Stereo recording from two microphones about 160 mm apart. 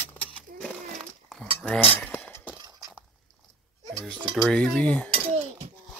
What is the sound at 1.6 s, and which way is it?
Cutlery, 5° left (ahead or behind).